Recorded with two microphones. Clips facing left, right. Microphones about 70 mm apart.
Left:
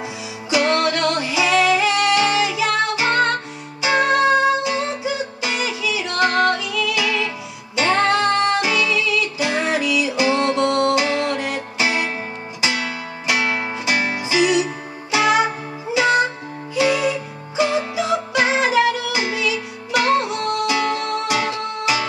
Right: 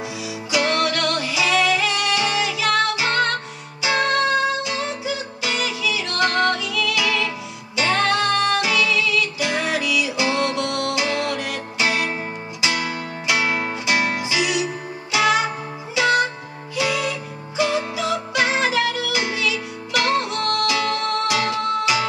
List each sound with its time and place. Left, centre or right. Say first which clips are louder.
0.6 s music: left 2 dB; centre
0.9 s music: left 3 dB; centre
8.1 s music: left 2 dB; left
8.6 s music: left 1 dB; centre
9.7 s music: left 2 dB; left
11.8 s music: left 1 dB; centre
12.7 s music: even; centre
14.2 s music: left 5 dB; left
15.1 s music: left 2 dB; centre